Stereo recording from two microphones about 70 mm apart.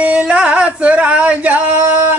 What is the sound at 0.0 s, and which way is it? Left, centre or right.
Male singing, centre.